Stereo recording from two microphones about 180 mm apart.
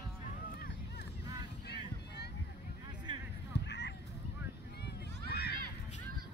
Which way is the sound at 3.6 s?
75° left (ahead or behind).